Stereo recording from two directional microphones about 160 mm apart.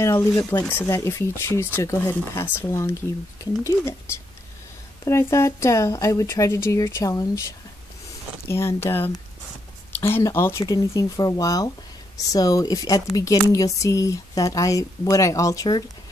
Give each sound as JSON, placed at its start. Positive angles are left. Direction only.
{"t": 0.0, "sound": "speech", "side_deg": 20}
{"t": 5.0, "sound": "speech", "side_deg": 20}